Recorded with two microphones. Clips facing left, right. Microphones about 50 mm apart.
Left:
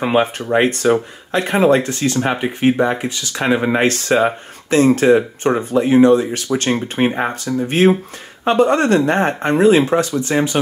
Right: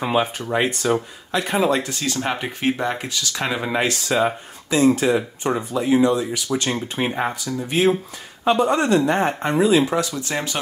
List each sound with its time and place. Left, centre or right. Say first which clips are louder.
0.0 s speech: left 5 dB; left
2.2 s speech: left 6 dB; centre
3.8 s speech: left 5 dB; left
4.6 s speech: left 5 dB; left
10.3 s speech: left 9 dB; centre